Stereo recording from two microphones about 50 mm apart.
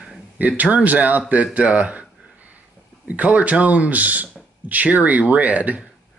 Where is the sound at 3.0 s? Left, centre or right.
Right.